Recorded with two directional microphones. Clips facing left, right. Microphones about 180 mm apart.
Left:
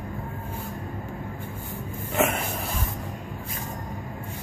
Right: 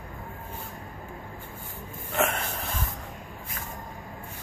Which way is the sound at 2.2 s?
10° left (ahead or behind).